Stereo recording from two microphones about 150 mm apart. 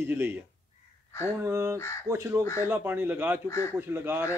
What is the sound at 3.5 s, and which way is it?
Speech, 20° left (ahead or behind).